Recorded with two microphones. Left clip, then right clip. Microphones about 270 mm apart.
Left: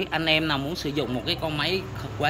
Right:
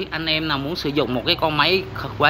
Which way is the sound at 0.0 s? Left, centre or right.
Centre.